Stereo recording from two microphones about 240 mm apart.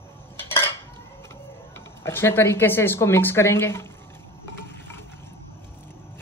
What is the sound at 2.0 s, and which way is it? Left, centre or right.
A woman's voice, centre.